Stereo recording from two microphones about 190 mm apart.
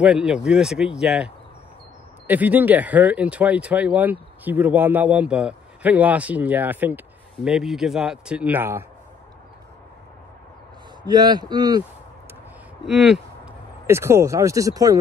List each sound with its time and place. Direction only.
0.0 s speech: 5° right (ahead or behind)
11.1 s speech: 20° right (ahead or behind)
12.8 s speech: 5° right (ahead or behind)
13.8 s speech: 15° right (ahead or behind)